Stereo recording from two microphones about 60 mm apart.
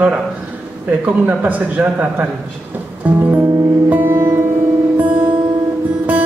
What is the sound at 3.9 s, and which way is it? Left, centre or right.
Music, right.